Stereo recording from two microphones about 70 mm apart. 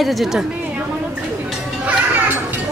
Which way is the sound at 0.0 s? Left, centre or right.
Centre.